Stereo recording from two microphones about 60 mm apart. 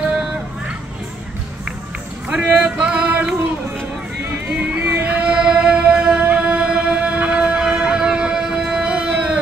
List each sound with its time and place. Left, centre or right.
2.2 s a sound: centre
4.5 s music: right
4.8 s music: right
5.4 s music: centre